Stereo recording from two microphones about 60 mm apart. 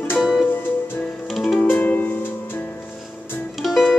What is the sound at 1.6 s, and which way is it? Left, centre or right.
Music, left.